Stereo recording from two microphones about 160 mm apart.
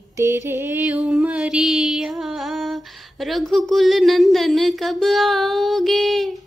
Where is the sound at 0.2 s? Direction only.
15° right (ahead or behind).